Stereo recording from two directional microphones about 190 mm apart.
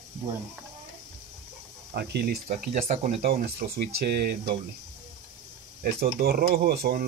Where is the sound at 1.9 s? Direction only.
55° right (ahead or behind).